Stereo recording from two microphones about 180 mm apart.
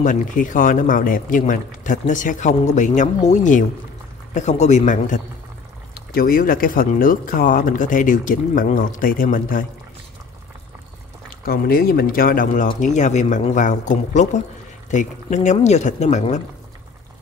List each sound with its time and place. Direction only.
0.0 s speech: 45° left (ahead or behind)
11.4 s speech: 55° left (ahead or behind)